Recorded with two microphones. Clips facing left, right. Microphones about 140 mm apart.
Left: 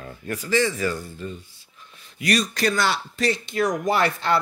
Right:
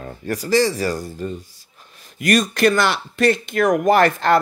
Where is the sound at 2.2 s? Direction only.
50° right (ahead or behind).